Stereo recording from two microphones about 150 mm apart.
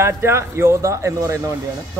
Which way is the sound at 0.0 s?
15° right (ahead or behind).